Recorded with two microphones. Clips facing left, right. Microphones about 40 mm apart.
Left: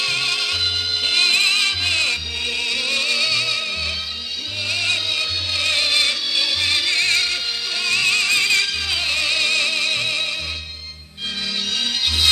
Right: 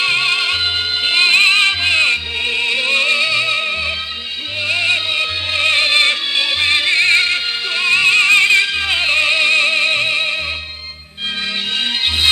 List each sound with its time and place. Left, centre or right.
0.0 s music: right